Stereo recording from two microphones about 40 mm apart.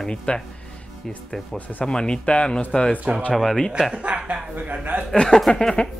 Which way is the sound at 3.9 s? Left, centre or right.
Right.